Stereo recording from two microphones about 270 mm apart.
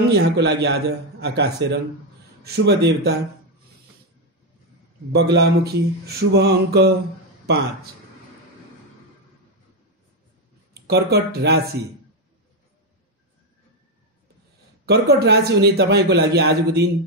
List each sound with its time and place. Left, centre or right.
0.1 s a man's voice: right
5.1 s a man's voice: right
10.7 s speech: right
14.9 s a man's voice: right